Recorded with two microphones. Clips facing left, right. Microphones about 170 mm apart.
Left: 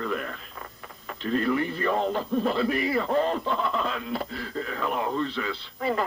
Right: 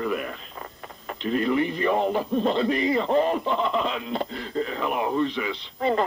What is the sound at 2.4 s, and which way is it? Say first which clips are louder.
Speech: right 4 dB; 25° right (ahead or behind).